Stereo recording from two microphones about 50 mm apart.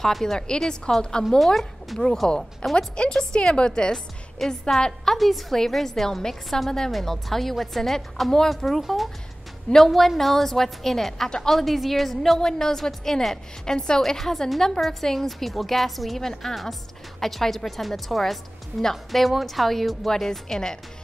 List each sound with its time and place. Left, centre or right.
0.0 s a woman's voice: centre
1.4 s a woman's voice: centre